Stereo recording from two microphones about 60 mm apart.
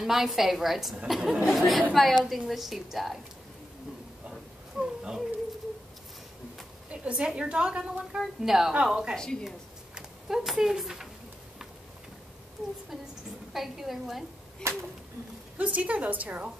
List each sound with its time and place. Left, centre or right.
0.0 s a woman's voice: centre
4.3 s a sound: centre
6.9 s a woman's voice: centre
9.1 s a woman's voice: centre
9.9 s speech: centre
13.5 s a woman's voice: centre
14.6 s a sound: right
15.5 s a woman's voice: right